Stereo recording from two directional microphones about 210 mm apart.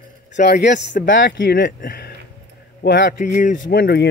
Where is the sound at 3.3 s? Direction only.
35° left (ahead or behind).